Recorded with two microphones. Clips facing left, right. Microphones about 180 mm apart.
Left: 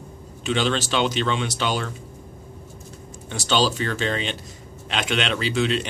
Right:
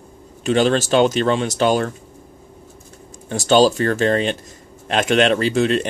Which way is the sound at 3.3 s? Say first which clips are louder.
Right 8 dB; 45° right (ahead or behind).